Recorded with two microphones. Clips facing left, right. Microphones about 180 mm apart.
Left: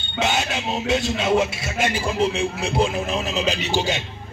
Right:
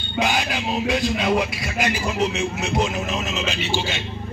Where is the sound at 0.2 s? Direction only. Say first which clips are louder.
Even; 25° left (ahead or behind).